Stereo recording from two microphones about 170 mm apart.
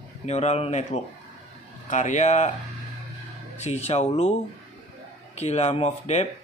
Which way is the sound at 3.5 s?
40° left (ahead or behind).